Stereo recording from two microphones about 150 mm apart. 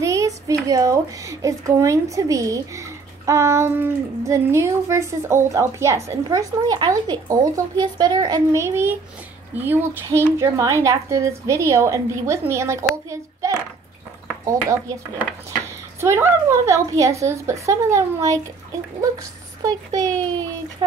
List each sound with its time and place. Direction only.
0.0 s speech: 20° right (ahead or behind)
13.1 s a sound: 20° right (ahead or behind)
14.4 s speech: 20° right (ahead or behind)
16.0 s speech: 15° right (ahead or behind)
19.6 s speech: 25° right (ahead or behind)